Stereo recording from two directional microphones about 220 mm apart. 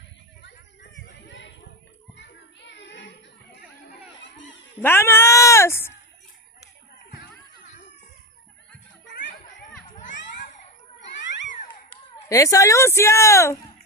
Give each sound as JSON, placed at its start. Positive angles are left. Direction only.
{"t": 2.1, "sound": "children playing", "side_deg": 55}
{"t": 4.2, "sound": "a sound", "side_deg": 55}
{"t": 4.8, "sound": "speech", "side_deg": 10}
{"t": 12.3, "sound": "speech", "side_deg": 15}